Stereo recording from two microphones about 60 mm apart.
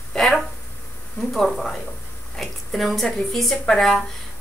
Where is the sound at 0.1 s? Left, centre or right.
Centre.